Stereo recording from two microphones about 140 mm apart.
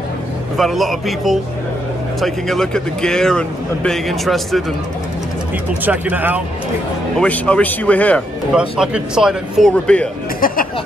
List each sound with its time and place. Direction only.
0.6 s speech: centre (ahead or behind)
5.9 s speech: 15° right (ahead or behind)
7.2 s speech: 5° left (ahead or behind)
8.5 s speech: 5° right (ahead or behind)
9.7 s speech: 5° left (ahead or behind)
10.4 s speech: 90° left